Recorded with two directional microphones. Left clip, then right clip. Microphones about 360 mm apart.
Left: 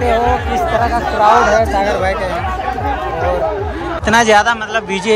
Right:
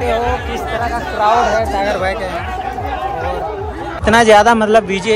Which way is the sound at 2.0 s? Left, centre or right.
Centre.